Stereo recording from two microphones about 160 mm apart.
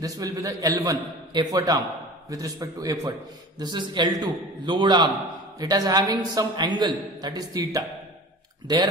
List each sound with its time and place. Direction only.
0.0 s a man's voice: 20° right (ahead or behind)